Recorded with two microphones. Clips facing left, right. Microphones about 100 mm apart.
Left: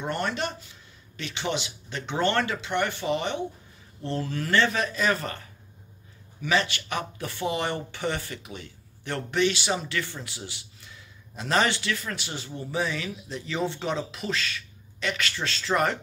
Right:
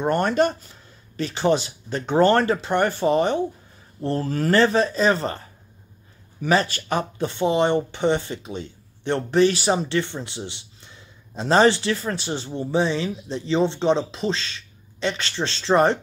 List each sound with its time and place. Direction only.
0.0 s speech: 45° right (ahead or behind)